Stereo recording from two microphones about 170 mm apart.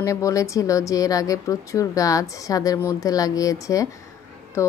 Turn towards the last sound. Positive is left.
turn(degrees=15)  # may be behind; listen again after turning